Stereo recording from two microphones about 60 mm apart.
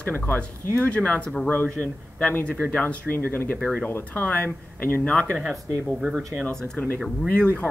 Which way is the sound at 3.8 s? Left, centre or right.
Left.